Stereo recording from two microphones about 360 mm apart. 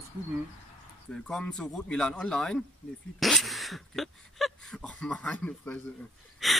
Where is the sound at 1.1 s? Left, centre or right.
Centre.